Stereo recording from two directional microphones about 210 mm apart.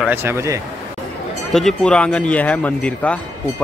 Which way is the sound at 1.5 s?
Centre (ahead or behind).